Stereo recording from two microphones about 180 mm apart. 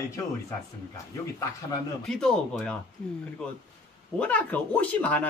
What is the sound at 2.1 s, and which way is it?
Speech, 5° left (ahead or behind).